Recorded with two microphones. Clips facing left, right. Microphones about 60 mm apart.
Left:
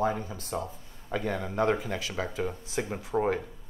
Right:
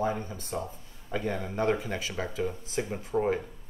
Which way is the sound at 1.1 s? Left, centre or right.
Left.